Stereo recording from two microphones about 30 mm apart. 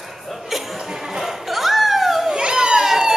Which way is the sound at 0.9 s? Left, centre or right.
Centre.